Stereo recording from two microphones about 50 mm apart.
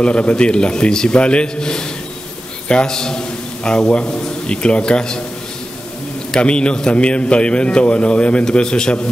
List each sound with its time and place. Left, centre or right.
0.0 s a man's voice: left
6.3 s a man's voice: centre